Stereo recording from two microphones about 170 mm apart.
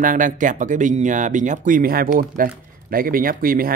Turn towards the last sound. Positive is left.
turn(degrees=-55)  # may be behind; listen again after turning